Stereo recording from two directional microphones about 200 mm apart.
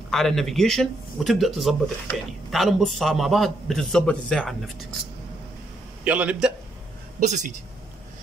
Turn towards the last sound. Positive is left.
turn(degrees=-35)  # may be behind; listen again after turning